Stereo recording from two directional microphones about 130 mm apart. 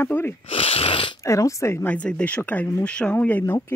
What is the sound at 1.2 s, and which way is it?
Speech, 25° left (ahead or behind).